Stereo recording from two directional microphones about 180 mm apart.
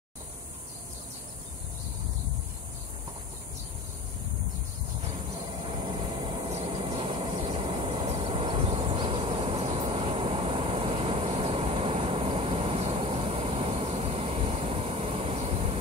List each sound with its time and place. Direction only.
6.5 s vehicle: 30° right (ahead or behind)